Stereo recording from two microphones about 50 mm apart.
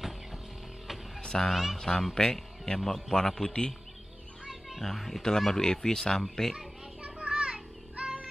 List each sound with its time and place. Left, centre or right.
1.2 s a sound: centre
1.5 s speech: centre
1.8 s a man's voice: centre
4.5 s music: centre
4.8 s a man's voice: centre
7.0 s children playing: right